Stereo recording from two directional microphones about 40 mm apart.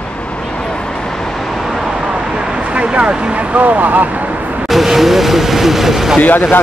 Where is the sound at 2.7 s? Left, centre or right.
Right.